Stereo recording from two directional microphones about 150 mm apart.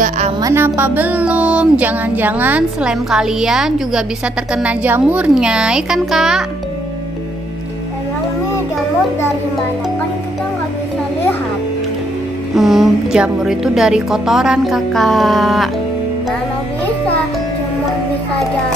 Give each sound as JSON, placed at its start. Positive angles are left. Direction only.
{"t": 0.4, "sound": "a sound", "side_deg": -20}
{"t": 4.6, "sound": "a woman's voice", "side_deg": -10}
{"t": 12.5, "sound": "a woman's voice", "side_deg": 0}